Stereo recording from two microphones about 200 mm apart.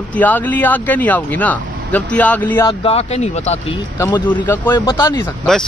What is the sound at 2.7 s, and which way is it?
Speech, 30° left (ahead or behind).